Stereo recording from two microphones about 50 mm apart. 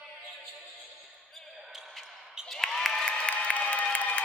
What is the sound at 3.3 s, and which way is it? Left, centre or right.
Applause, left.